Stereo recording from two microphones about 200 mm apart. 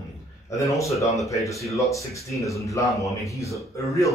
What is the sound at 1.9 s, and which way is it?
Speech, 15° left (ahead or behind).